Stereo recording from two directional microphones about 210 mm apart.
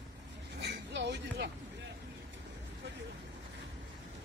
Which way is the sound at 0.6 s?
55° right (ahead or behind).